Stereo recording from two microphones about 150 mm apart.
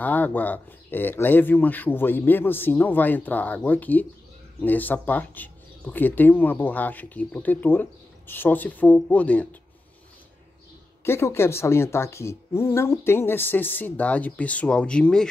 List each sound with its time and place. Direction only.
0.0 s speech: 10° left (ahead or behind)
11.1 s speech: 15° left (ahead or behind)